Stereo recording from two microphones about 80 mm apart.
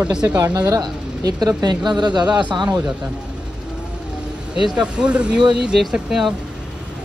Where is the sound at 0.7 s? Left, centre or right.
Right.